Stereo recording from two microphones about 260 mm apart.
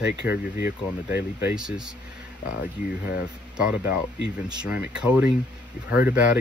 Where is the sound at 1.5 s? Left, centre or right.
Centre.